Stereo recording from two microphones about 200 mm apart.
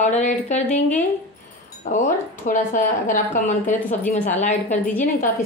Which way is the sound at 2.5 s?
40° left (ahead or behind).